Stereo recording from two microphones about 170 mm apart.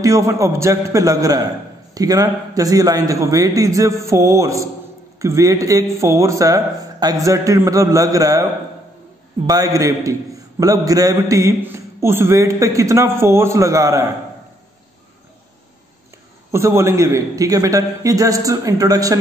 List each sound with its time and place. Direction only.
0.0 s a man's voice: 20° right (ahead or behind)
9.5 s a man's voice: 20° right (ahead or behind)
16.5 s a man's voice: 15° right (ahead or behind)